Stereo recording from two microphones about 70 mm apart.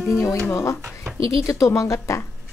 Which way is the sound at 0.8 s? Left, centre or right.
Centre.